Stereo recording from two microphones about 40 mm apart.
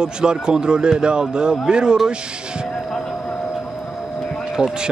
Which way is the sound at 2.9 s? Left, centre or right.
Centre.